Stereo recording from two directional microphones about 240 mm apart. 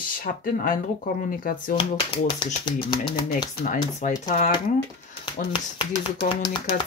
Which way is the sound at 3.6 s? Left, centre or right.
Left.